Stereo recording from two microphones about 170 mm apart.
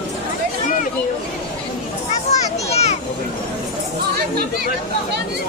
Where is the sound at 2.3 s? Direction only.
40° left (ahead or behind).